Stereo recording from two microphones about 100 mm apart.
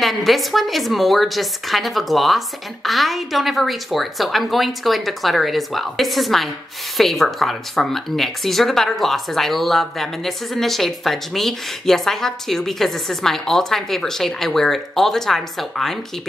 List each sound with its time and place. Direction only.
0.0 s speech: centre (ahead or behind)